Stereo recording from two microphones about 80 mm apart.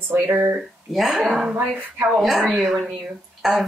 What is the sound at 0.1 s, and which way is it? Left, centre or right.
Speech, right.